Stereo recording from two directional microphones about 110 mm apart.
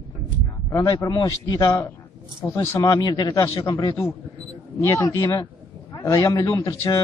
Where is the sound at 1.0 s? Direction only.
30° left (ahead or behind).